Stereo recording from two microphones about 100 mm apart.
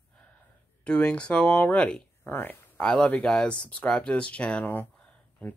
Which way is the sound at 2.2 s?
20° left (ahead or behind).